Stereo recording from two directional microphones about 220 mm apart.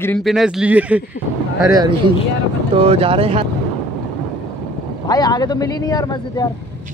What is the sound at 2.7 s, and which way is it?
Speech, 25° right (ahead or behind).